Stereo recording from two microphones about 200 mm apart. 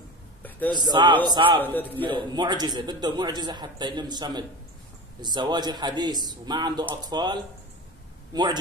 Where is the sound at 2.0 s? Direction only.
25° right (ahead or behind).